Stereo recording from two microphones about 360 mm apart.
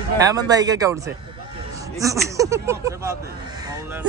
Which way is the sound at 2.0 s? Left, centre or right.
Centre.